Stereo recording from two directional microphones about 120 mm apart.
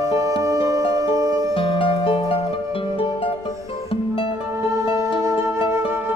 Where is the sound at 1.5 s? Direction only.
45° left (ahead or behind).